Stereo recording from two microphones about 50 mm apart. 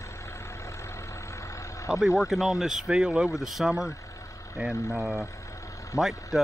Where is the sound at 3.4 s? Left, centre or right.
Centre.